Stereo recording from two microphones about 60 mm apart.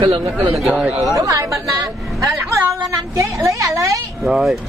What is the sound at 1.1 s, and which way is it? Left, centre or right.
A woman's voice, right.